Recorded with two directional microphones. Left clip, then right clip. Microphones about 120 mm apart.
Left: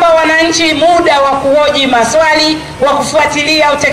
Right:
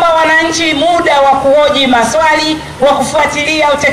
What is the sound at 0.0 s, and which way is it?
A man's voice, 25° left (ahead or behind).